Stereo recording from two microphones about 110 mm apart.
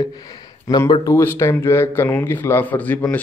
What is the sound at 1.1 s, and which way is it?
A man's voice, 25° left (ahead or behind).